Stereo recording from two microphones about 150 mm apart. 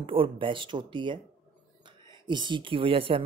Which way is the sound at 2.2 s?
30° right (ahead or behind).